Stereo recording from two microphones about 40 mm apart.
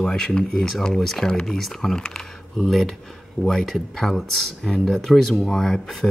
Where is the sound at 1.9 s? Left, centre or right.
Left.